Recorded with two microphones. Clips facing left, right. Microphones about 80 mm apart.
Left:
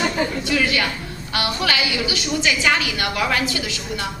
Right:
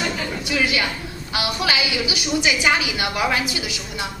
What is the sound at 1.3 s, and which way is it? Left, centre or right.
A woman's voice, centre.